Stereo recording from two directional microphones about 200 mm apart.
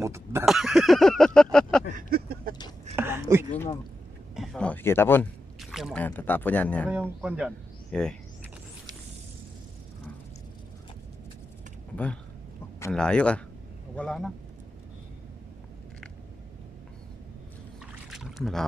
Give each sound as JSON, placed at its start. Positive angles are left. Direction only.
{"t": 0.0, "sound": "speech", "side_deg": -15}
{"t": 0.5, "sound": "speech", "side_deg": 0}
{"t": 2.0, "sound": "a sound", "side_deg": -50}
{"t": 3.0, "sound": "a sound", "side_deg": -10}
{"t": 4.4, "sound": "a sound", "side_deg": 5}
{"t": 5.6, "sound": "speech", "side_deg": 0}
{"t": 6.9, "sound": "speech", "side_deg": -5}
{"t": 12.9, "sound": "speech", "side_deg": 5}
{"t": 18.1, "sound": "rowboat", "side_deg": 0}